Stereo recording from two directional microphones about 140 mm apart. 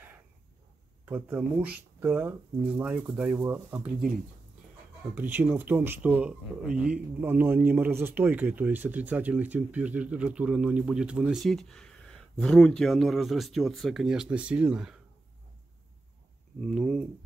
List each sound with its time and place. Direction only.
1.0 s speech: 10° right (ahead or behind)
3.3 s speech: 20° right (ahead or behind)
5.0 s speech: 15° right (ahead or behind)
11.4 s speech: 5° left (ahead or behind)
16.7 s speech: 5° right (ahead or behind)